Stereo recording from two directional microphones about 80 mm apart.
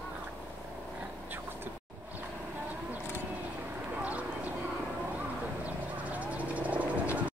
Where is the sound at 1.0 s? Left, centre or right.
Right.